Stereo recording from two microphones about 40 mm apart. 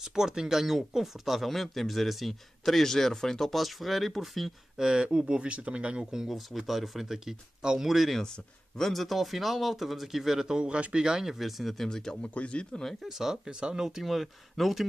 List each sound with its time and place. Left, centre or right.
0.0 s speech: centre
3.6 s speech: centre
4.7 s speech: centre
6.2 s speech: centre
7.9 s speech: centre
10.5 s speech: right
11.1 s speech: centre
12.2 s speech: left
12.8 s speech: centre
13.5 s speech: right
14.0 s speech: centre